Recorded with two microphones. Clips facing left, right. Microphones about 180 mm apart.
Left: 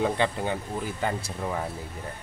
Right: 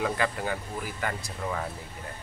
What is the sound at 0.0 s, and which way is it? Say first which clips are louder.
Speech: left 3 dB; 25° left (ahead or behind).